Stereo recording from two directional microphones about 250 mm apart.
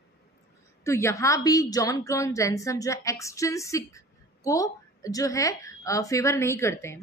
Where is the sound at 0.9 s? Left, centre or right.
Centre.